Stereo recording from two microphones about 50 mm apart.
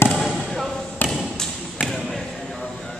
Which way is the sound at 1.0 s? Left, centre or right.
Left.